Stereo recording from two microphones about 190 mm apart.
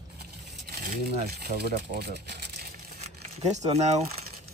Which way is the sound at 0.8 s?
55° right (ahead or behind).